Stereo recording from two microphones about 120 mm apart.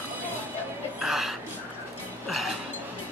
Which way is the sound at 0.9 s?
5° right (ahead or behind).